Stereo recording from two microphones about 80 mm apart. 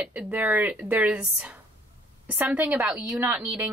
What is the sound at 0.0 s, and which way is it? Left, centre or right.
A woman's voice, centre.